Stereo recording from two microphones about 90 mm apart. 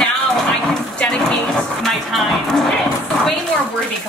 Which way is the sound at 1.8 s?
Centre (ahead or behind).